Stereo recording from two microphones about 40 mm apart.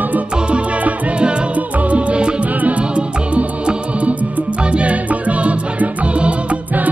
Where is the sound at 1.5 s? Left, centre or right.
Right.